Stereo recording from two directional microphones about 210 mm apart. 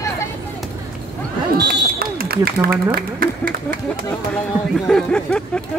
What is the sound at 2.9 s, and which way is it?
Speech, 45° right (ahead or behind).